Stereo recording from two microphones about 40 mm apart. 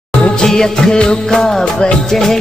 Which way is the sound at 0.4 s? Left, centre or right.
Centre.